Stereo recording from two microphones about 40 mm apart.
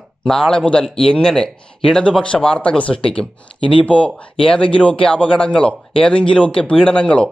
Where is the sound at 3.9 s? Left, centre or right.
Left.